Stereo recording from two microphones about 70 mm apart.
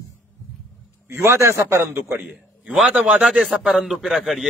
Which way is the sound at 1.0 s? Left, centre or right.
Right.